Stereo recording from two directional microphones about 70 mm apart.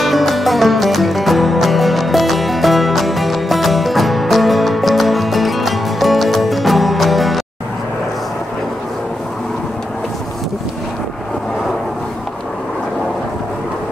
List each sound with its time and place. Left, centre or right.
0.0 s music: centre